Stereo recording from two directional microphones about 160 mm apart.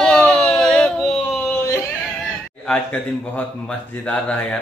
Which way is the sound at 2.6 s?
10° left (ahead or behind).